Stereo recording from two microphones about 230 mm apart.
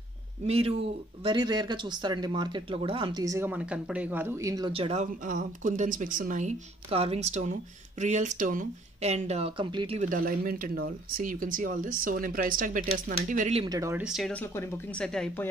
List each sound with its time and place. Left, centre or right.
0.5 s speech: right
13.7 s speech: centre